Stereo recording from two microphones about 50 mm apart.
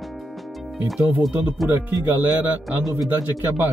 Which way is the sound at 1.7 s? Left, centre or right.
Right.